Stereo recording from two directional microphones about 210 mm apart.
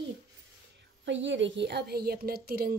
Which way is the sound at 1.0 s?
60° right (ahead or behind).